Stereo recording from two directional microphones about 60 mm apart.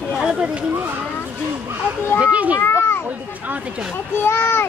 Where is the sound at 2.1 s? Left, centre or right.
Centre.